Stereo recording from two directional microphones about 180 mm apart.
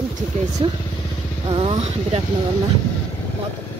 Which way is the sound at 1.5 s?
35° right (ahead or behind).